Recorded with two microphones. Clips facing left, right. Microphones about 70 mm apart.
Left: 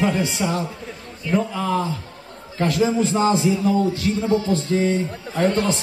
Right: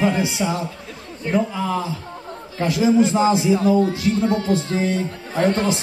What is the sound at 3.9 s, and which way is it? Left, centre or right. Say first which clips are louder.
Speech: right 1 dB; right.